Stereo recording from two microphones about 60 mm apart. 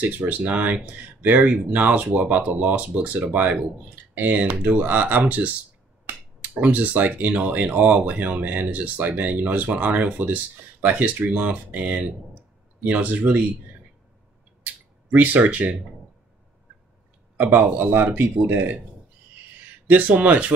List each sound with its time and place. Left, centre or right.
0.0 s speech: right
6.6 s speech: right
14.6 s a sound: right
17.6 s speech: right
19.9 s speech: right